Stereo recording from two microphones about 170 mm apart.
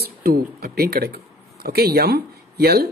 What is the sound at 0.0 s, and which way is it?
Speech, 60° right (ahead or behind).